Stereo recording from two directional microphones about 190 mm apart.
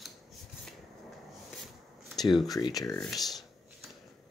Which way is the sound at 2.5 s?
20° left (ahead or behind).